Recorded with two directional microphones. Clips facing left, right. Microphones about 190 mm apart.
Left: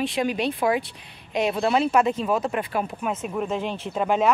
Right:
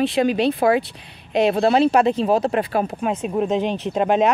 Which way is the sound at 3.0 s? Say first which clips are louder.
Right 6 dB; 15° right (ahead or behind).